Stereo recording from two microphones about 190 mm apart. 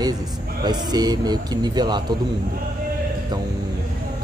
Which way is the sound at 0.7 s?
20° right (ahead or behind).